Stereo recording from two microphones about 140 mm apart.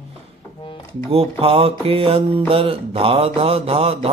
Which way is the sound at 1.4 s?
45° right (ahead or behind).